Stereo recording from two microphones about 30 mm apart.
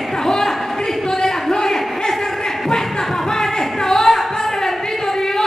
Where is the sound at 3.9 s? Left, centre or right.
Centre.